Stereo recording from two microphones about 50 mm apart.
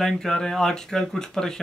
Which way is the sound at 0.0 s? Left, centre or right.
Centre.